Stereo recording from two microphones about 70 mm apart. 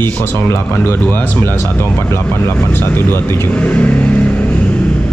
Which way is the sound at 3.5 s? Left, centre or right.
Centre.